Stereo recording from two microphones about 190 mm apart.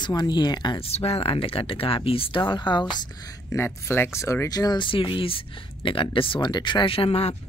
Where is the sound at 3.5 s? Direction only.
15° left (ahead or behind); by 7.3 s 30° left (ahead or behind).